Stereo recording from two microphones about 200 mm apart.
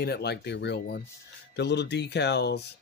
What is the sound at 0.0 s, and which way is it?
Speech, 55° left (ahead or behind).